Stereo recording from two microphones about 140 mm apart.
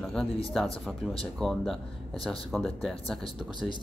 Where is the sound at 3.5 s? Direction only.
35° left (ahead or behind).